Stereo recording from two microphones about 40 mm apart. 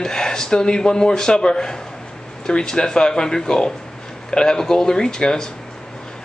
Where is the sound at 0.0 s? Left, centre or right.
Centre.